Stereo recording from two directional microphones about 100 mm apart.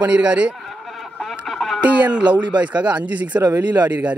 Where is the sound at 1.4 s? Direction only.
Centre (ahead or behind).